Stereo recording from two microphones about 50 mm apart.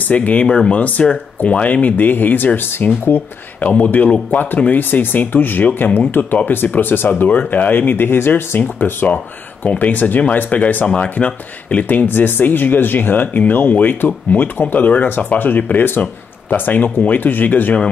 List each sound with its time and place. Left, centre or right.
0.1 s speech: left
7.2 s speech: left
10.9 s speech: left